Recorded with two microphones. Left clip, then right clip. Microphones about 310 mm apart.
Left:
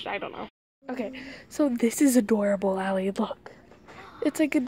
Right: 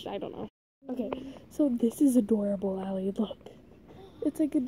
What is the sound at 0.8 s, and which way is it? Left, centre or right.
Speech, left.